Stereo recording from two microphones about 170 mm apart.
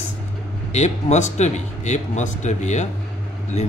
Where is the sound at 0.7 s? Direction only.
40° left (ahead or behind).